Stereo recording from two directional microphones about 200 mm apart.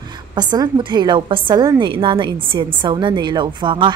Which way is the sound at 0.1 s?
20° right (ahead or behind).